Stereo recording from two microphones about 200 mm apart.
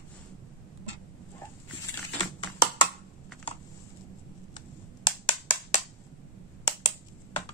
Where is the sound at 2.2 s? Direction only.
25° left (ahead or behind).